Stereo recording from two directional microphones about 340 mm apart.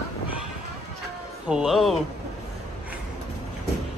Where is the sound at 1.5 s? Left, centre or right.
Centre.